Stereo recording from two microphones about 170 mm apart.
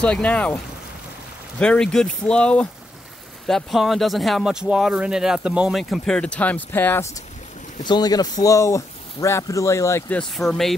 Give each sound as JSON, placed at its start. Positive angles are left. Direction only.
{"t": 0.0, "sound": "speech", "side_deg": 5}
{"t": 1.6, "sound": "speech", "side_deg": 5}
{"t": 7.8, "sound": "speech", "side_deg": 25}